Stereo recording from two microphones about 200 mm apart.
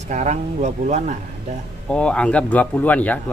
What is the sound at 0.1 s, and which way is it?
Speech, 35° right (ahead or behind).